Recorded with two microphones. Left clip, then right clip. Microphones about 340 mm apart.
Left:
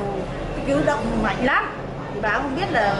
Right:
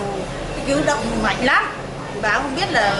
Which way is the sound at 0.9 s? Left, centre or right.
Centre.